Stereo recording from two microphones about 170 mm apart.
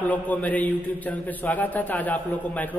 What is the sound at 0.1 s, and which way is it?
A man's voice, 10° left (ahead or behind).